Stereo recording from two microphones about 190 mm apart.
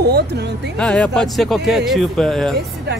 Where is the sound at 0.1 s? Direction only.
60° right (ahead or behind).